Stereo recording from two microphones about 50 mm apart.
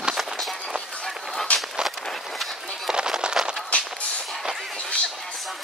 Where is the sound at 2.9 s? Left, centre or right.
Centre.